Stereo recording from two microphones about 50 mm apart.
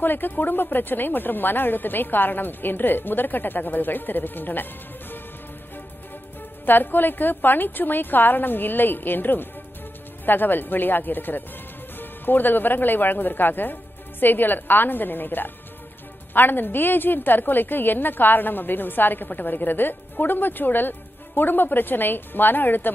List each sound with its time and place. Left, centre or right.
0.0 s speech: left
6.6 s speech: left